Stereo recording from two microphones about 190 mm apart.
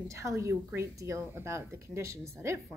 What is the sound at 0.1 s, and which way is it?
A woman's voice, 15° right (ahead or behind).